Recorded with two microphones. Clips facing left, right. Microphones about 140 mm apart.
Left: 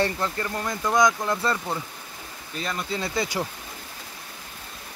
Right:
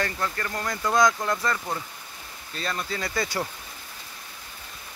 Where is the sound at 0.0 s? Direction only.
20° left (ahead or behind).